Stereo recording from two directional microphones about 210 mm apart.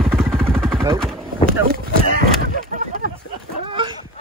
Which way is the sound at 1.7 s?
45° right (ahead or behind).